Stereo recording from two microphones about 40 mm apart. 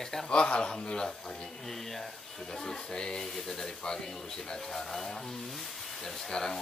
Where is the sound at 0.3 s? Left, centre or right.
Left.